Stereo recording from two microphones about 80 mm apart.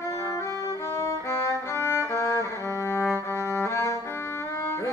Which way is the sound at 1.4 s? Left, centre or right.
Left.